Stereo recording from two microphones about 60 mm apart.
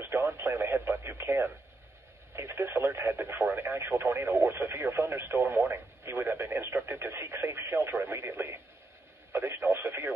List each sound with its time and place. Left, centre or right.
0.0 s radio: right
2.3 s speech: right